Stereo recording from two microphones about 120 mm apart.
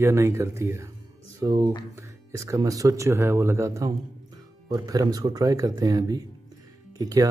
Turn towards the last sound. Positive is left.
turn(degrees=-30)  # may be behind; listen again after turning